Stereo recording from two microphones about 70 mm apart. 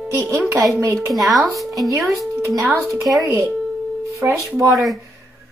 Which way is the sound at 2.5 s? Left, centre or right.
Right.